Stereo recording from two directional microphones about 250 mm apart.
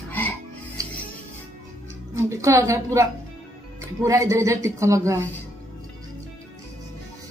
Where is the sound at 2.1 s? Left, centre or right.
Centre.